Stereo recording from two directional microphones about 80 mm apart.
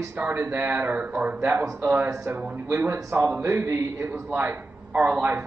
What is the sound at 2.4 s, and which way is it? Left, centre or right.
A man's voice, right.